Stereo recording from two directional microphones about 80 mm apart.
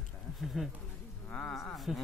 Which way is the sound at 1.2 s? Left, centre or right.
Centre.